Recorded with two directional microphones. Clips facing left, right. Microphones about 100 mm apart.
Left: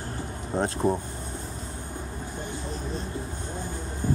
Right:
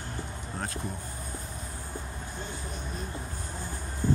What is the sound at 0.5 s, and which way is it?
Speech, 25° left (ahead or behind).